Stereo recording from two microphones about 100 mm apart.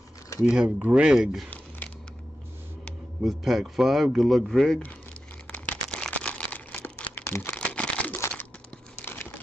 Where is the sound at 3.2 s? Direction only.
Centre (ahead or behind).